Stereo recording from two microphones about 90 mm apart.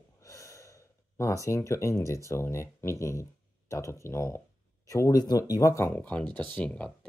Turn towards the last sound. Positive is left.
turn(degrees=15)  # may be behind; listen again after turning